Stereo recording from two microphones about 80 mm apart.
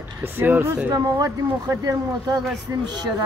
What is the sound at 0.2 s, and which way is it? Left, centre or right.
Speech, right.